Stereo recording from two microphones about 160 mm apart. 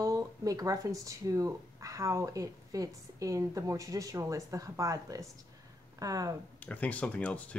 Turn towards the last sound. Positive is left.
turn(degrees=10)  # may be behind; listen again after turning